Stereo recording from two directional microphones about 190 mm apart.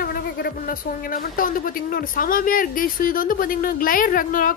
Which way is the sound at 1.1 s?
45° left (ahead or behind).